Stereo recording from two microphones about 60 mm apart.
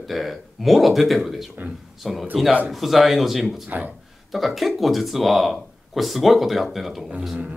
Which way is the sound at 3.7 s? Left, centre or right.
Right.